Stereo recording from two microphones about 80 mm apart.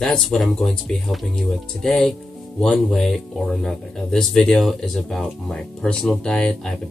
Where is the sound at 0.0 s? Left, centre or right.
Centre.